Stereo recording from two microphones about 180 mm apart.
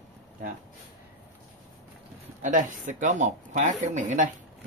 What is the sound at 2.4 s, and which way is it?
Speech, 45° right (ahead or behind).